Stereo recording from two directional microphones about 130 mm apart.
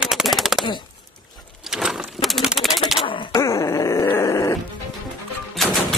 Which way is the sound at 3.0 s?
40° left (ahead or behind).